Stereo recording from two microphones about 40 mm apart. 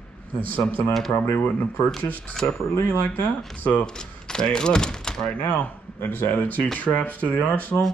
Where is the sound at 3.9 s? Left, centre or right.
Centre.